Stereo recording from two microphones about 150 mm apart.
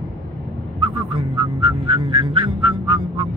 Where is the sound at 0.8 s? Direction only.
30° right (ahead or behind).